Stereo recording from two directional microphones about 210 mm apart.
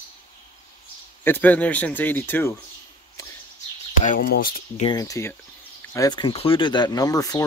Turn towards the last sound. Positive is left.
turn(degrees=15)  # may be behind; listen again after turning